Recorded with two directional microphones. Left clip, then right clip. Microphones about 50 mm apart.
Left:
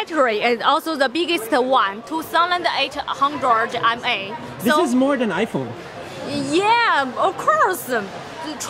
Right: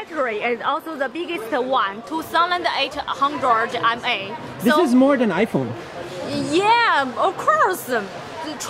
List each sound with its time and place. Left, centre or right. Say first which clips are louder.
0.1 s a woman's voice: left 4 dB; left
1.1 s a woman's voice: left 5 dB; left
1.7 s a woman's voice: left 2 dB; left
2.1 s a woman's voice: left 1 dB; centre